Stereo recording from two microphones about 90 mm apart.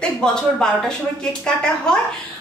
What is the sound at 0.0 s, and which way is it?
A woman's voice, 10° left (ahead or behind).